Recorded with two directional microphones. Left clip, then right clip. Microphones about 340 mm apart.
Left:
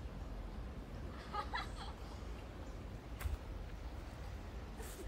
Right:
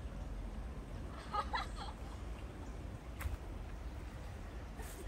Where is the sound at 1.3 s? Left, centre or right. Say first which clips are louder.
Right 4 dB; centre.